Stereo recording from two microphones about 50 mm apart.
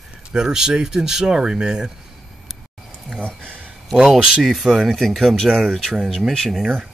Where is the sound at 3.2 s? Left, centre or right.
Left.